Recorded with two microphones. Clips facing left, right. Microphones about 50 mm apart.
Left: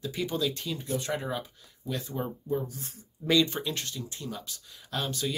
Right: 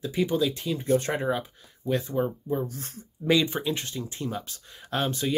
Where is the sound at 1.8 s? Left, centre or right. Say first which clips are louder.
Right 8 dB; right.